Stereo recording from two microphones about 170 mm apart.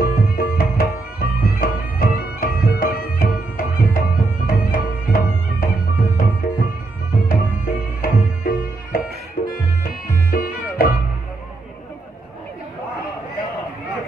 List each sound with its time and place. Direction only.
0.0 s music: 60° left (ahead or behind)